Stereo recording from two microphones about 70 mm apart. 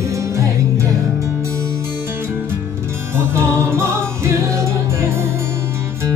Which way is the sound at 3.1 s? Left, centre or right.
Right.